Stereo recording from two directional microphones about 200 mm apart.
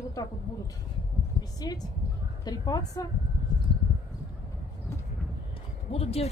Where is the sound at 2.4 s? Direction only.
20° left (ahead or behind).